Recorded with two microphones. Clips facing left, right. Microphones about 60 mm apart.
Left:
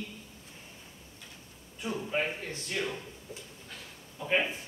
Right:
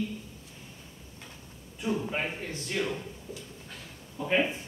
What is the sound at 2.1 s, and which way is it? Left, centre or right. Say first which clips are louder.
Speech: left 1 dB; centre.